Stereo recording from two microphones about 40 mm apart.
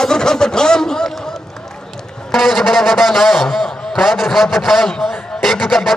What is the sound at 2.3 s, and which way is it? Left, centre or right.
A man's voice, centre.